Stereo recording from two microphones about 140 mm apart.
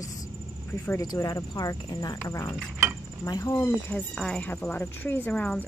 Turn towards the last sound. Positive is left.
turn(degrees=10)  # may be behind; listen again after turning